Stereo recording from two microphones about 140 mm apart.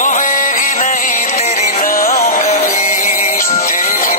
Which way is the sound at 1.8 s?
90° left.